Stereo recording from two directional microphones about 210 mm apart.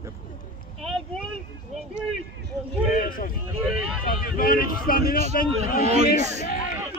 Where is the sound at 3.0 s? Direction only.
40° left (ahead or behind).